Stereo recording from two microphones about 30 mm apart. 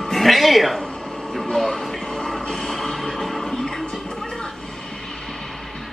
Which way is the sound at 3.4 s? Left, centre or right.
Centre.